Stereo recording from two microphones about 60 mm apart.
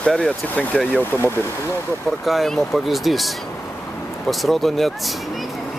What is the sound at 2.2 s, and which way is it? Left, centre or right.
Speech, centre.